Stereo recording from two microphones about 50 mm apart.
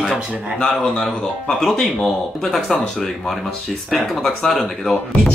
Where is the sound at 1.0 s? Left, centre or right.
Centre.